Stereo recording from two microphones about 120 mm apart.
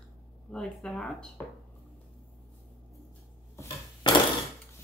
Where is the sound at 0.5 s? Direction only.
5° left (ahead or behind).